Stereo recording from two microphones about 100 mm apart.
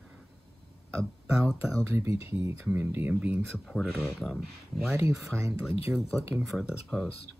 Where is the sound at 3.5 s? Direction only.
5° left (ahead or behind).